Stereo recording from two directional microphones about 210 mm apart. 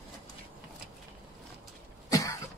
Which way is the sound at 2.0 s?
15° left (ahead or behind).